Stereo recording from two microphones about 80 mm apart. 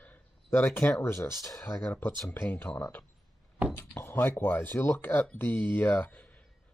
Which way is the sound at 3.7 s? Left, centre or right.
Left.